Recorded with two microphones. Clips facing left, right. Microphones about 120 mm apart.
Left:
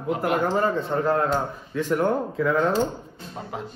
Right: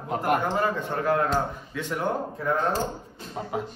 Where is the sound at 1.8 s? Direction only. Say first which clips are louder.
Left 8 dB; 40° left (ahead or behind).